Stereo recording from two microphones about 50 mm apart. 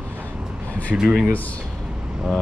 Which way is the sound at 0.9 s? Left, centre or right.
Centre.